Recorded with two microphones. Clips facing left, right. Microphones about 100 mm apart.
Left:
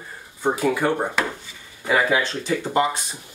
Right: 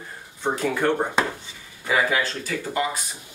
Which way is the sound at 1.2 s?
25° right (ahead or behind).